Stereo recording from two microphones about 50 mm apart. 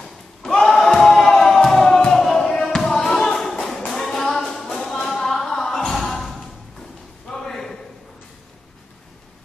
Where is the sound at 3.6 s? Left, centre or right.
Centre.